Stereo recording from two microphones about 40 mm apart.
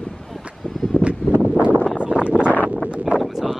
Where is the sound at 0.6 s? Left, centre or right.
Centre.